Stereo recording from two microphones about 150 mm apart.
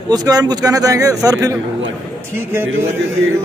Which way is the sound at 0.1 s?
25° right (ahead or behind).